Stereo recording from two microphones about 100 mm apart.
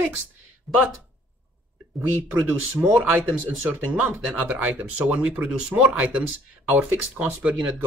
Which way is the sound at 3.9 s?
15° right (ahead or behind).